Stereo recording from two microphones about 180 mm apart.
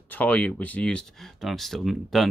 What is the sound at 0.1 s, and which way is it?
Speech, 10° left (ahead or behind).